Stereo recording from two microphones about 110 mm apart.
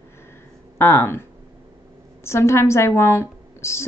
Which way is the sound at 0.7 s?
20° left (ahead or behind).